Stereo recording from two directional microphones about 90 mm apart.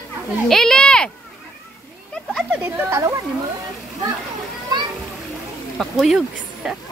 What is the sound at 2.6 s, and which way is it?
Speech, 35° right (ahead or behind).